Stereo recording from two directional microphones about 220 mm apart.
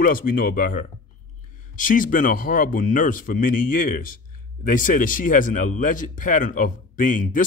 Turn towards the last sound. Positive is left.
turn(degrees=35)  # may be behind; listen again after turning